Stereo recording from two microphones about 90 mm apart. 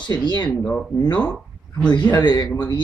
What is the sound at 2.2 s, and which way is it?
Speech, 50° left (ahead or behind).